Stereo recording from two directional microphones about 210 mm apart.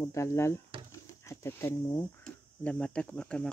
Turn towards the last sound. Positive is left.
turn(degrees=5)  # may be behind; listen again after turning